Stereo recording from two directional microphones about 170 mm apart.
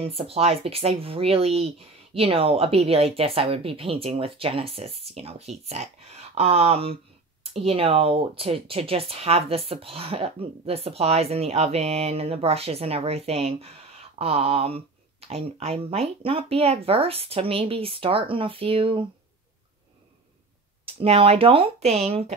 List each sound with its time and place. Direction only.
0.0 s speech: 35° right (ahead or behind)
20.8 s speech: 35° right (ahead or behind)